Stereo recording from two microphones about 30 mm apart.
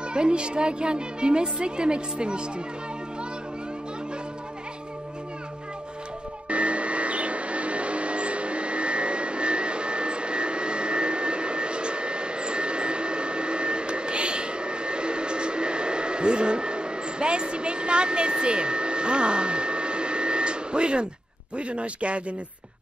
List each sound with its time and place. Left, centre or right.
0.1 s speech: right
6.5 s vacuum cleaner: right
21.5 s speech: right